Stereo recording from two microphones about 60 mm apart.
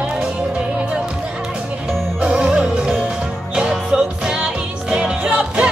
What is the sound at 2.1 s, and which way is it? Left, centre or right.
Music, centre.